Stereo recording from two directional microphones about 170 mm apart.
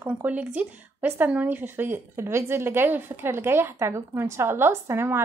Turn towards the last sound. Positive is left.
turn(degrees=-15)  # may be behind; listen again after turning